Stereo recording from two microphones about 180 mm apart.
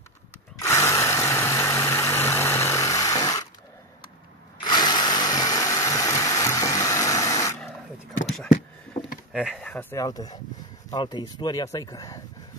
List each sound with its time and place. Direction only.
0.6 s power tool: 15° left (ahead or behind)
4.6 s tools: 25° left (ahead or behind)
9.3 s speech: centre (ahead or behind); by 12.2 s 20° left (ahead or behind)